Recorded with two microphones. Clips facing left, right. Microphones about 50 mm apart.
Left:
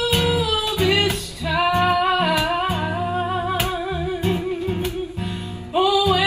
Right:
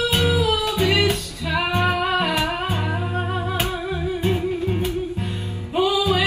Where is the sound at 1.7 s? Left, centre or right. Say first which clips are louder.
Left 2 dB; right.